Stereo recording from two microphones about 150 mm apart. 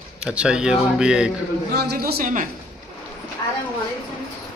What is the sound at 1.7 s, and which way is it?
Speech, 90° right.